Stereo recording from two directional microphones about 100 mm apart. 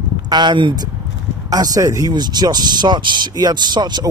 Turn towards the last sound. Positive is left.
turn(degrees=-45)  # may be behind; listen again after turning